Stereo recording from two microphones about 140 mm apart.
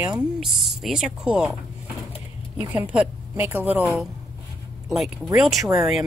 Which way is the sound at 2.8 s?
10° right (ahead or behind).